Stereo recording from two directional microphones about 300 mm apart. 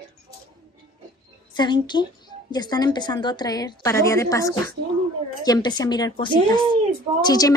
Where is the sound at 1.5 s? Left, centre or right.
Centre.